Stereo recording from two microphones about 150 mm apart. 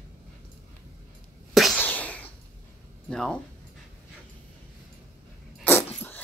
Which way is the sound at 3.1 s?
5° left (ahead or behind).